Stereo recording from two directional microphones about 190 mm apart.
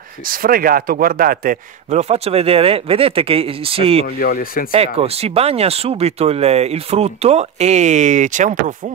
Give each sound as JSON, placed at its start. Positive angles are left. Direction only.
{"t": 0.3, "sound": "speech", "side_deg": -50}
{"t": 4.2, "sound": "speech", "side_deg": 50}
{"t": 4.7, "sound": "speech", "side_deg": -30}